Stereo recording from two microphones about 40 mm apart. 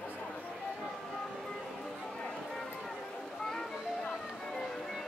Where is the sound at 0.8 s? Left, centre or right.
Centre.